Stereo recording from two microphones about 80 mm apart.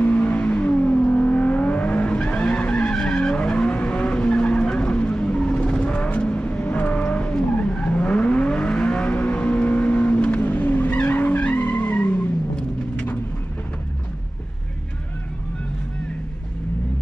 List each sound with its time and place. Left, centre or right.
0.0 s vehicle: centre